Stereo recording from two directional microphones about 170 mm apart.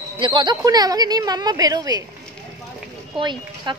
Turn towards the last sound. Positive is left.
turn(degrees=-25)  # may be behind; listen again after turning